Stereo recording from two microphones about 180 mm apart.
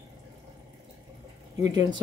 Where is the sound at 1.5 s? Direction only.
20° right (ahead or behind).